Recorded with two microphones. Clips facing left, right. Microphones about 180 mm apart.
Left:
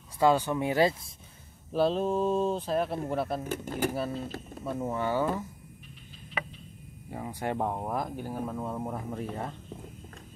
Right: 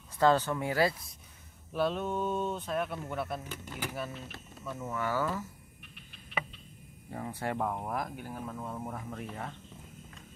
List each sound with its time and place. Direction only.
0.2 s speech: 10° left (ahead or behind); by 3.4 s 30° left (ahead or behind)
3.4 s speech: 45° left (ahead or behind)
4.7 s speech: 30° left (ahead or behind)
7.1 s speech: 15° left (ahead or behind); by 9.5 s 35° left (ahead or behind)